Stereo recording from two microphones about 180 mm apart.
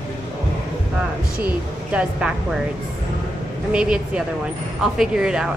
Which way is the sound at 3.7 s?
5° right (ahead or behind).